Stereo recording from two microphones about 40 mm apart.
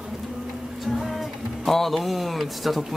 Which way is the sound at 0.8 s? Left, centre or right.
Centre.